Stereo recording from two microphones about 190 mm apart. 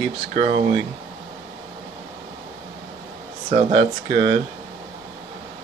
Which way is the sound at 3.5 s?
35° right (ahead or behind).